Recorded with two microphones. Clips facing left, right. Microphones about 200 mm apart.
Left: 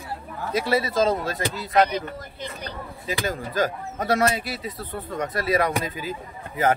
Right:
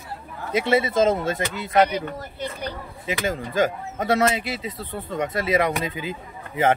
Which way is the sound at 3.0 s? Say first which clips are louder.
Right 2 dB; 20° right (ahead or behind).